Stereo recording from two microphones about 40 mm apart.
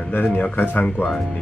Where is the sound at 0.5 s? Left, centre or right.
Left.